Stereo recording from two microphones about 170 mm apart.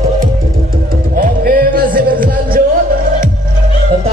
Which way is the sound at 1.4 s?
55° right (ahead or behind).